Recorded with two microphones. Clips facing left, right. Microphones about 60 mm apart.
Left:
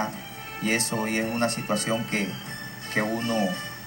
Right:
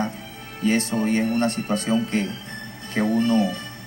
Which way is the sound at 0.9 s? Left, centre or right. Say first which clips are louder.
Right 5 dB; left.